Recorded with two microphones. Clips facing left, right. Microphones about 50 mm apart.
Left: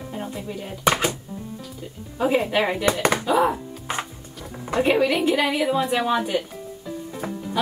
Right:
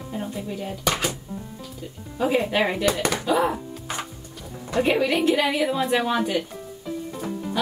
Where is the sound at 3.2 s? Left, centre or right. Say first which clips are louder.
Left 2 dB; centre.